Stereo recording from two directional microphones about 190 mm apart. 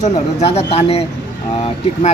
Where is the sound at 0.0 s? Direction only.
35° left (ahead or behind).